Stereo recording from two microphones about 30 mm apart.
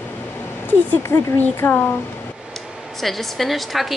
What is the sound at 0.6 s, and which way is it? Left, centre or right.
Speech, left.